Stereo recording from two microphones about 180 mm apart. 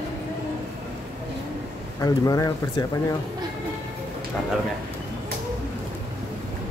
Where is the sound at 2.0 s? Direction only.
20° left (ahead or behind).